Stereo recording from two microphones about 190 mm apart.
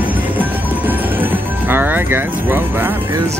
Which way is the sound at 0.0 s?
10° right (ahead or behind).